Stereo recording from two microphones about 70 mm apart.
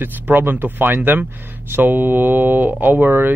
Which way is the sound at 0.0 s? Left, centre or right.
Right.